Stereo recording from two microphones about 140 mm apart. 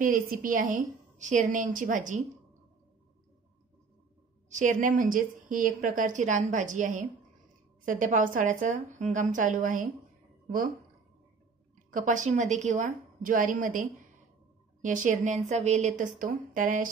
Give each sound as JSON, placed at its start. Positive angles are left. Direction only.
{"t": 0.0, "sound": "a woman's voice", "side_deg": -80}
{"t": 4.5, "sound": "a woman's voice", "side_deg": -60}
{"t": 11.9, "sound": "a woman's voice", "side_deg": -65}
{"t": 14.8, "sound": "a woman's voice", "side_deg": -65}